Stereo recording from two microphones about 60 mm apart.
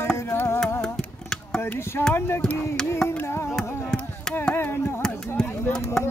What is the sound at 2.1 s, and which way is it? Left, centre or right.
Music, left.